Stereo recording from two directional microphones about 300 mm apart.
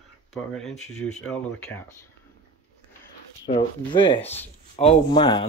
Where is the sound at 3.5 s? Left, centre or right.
Centre.